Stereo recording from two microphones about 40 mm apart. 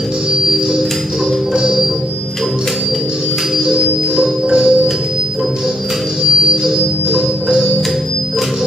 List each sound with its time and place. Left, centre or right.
1.6 s music: centre
3.6 s music: centre